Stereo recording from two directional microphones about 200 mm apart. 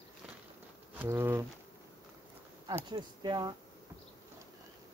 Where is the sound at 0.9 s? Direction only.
10° right (ahead or behind).